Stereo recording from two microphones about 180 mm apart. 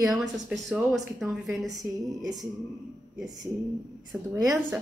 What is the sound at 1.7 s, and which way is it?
Speech, 20° right (ahead or behind).